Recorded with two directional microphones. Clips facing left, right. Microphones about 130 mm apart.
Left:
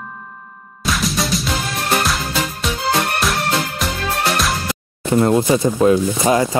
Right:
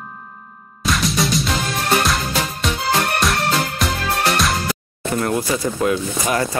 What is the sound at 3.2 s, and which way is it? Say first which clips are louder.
Music: even; centre (ahead or behind).